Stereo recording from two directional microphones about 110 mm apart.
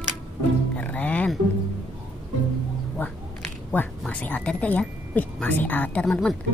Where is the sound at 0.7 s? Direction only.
15° left (ahead or behind).